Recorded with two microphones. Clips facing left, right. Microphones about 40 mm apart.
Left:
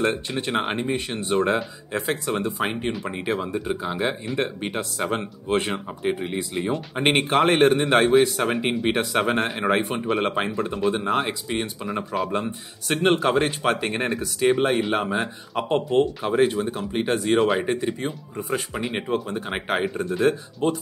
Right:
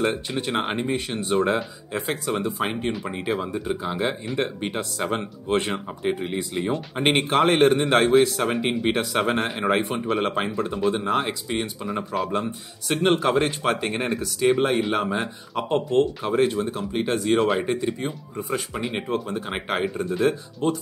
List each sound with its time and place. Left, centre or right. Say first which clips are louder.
0.0 s speech: even; centre
15.7 s speech: even; left
16.3 s speech: left 1 dB; centre
20.6 s speech: left 1 dB; left